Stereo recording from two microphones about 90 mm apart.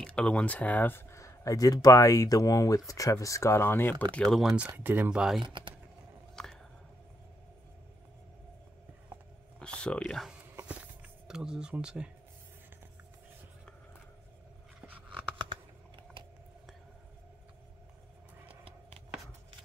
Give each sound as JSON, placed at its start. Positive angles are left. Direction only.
{"t": 0.0, "sound": "speech", "side_deg": 10}
{"t": 1.1, "sound": "speech", "side_deg": 35}
{"t": 4.1, "sound": "speech", "side_deg": 5}
{"t": 4.4, "sound": "speech", "side_deg": -10}
{"t": 5.4, "sound": "speech", "side_deg": -65}
{"t": 6.3, "sound": "a sound", "side_deg": 5}
{"t": 9.6, "sound": "speech", "side_deg": 10}
{"t": 10.7, "sound": "a sound", "side_deg": -10}
{"t": 11.8, "sound": "speech", "side_deg": -10}
{"t": 15.3, "sound": "computer keyboard", "side_deg": -65}
{"t": 18.5, "sound": "a sound", "side_deg": -90}